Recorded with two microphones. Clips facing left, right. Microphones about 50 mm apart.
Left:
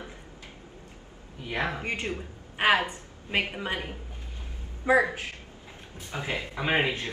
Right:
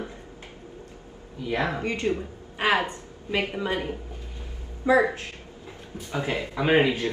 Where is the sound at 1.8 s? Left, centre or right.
Left.